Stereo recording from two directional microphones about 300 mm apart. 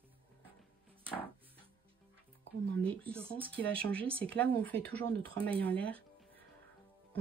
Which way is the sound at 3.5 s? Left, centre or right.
Centre.